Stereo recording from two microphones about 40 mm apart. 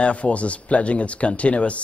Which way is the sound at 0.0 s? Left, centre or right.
Left.